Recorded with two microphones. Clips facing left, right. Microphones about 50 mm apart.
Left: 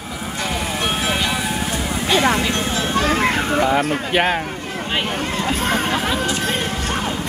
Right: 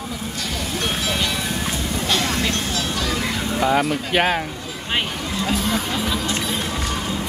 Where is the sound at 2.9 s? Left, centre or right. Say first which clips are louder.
Left 10 dB; left.